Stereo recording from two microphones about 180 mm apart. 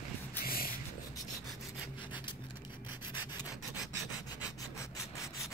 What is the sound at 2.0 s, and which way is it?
Rub, 25° left (ahead or behind).